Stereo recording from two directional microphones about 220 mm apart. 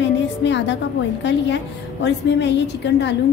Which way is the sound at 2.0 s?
55° left (ahead or behind).